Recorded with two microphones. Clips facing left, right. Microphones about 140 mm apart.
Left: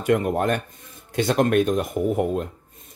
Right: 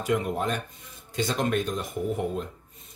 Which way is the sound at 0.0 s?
55° left (ahead or behind).